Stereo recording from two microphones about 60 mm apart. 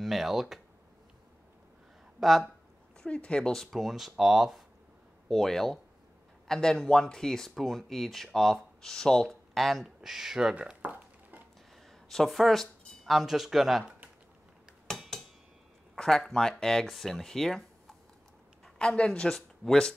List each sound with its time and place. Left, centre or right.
0.0 s speech: centre
2.1 s speech: centre
3.0 s speech: centre
3.7 s speech: centre
5.3 s speech: centre
10.9 s a sound: right
12.1 s speech: centre
14.9 s a sound: centre
16.0 s speech: centre